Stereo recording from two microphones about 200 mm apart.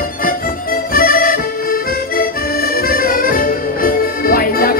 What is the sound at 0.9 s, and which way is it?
Accordion, 45° left (ahead or behind).